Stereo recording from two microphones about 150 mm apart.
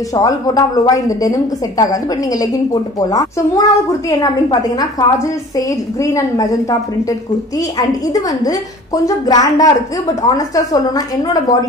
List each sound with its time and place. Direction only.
0.1 s a woman's voice: 25° left (ahead or behind)
6.0 s a woman's voice: 20° left (ahead or behind)
8.1 s a woman's voice: 25° left (ahead or behind)